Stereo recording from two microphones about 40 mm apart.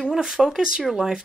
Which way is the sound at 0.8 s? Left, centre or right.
Centre.